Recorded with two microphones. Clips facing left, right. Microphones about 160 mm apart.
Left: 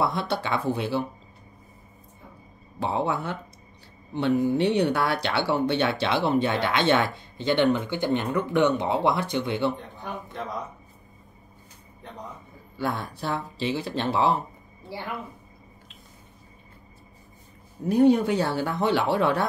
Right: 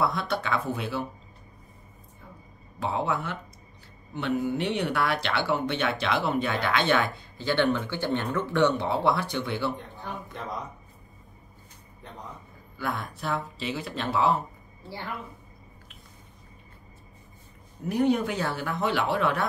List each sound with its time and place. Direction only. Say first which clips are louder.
0.0 s speech: left 1 dB; 30° left (ahead or behind)
2.8 s speech: left 2 dB; 30° left (ahead or behind)
12.7 s speech: left 3 dB; 30° left (ahead or behind)
17.8 s speech: left 5 dB; 30° left (ahead or behind)